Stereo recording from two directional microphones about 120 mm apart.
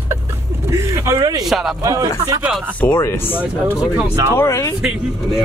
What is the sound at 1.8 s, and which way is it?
Speech, 30° right (ahead or behind).